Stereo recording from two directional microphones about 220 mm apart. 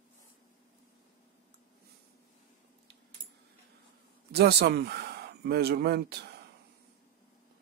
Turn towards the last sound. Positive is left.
turn(degrees=-45)  # may be behind; listen again after turning